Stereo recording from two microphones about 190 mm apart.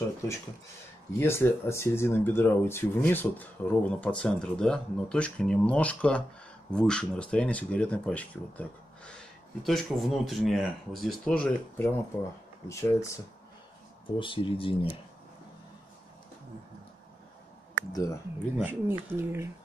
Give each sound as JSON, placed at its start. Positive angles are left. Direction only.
{"t": 1.2, "sound": "speech", "side_deg": 15}
{"t": 12.6, "sound": "speech", "side_deg": 15}
{"t": 14.1, "sound": "speech", "side_deg": 25}
{"t": 17.9, "sound": "speech", "side_deg": 15}
{"t": 18.6, "sound": "speech", "side_deg": -10}